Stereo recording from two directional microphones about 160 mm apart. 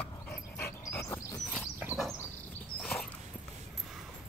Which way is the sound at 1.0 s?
20° left (ahead or behind).